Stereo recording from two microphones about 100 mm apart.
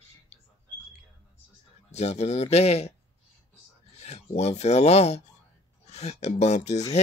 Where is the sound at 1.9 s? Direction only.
90° left.